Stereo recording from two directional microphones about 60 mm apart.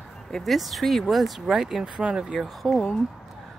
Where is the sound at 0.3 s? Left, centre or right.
Centre.